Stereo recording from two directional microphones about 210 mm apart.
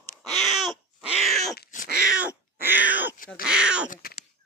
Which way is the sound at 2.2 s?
10° right (ahead or behind).